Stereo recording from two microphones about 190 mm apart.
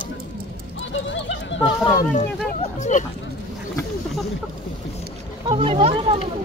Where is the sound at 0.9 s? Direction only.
75° left (ahead or behind).